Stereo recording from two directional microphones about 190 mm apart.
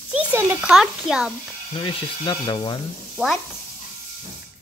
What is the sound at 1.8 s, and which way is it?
Speech, 30° left (ahead or behind).